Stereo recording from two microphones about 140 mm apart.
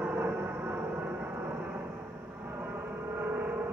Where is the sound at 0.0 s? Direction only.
10° right (ahead or behind).